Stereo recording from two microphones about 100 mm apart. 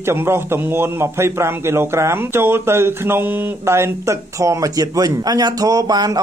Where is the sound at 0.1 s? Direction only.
25° right (ahead or behind).